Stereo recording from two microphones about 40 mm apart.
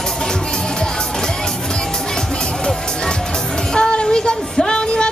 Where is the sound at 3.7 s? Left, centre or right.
Left.